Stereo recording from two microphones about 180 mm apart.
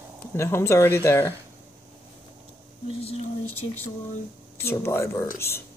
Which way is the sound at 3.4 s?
10° left (ahead or behind).